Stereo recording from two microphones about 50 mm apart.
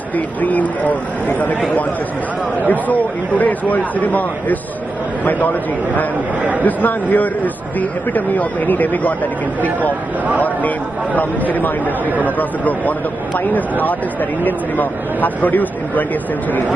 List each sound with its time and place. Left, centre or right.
0.4 s speech: left
2.6 s speech: left
11.1 s speech: left